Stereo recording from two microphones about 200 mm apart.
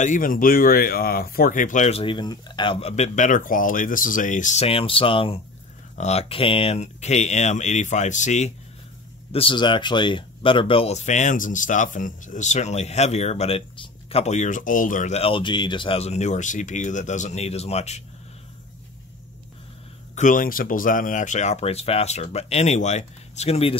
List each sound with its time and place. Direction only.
0.0 s speech: 40° left (ahead or behind)
9.3 s speech: 25° left (ahead or behind)
20.2 s speech: 40° left (ahead or behind)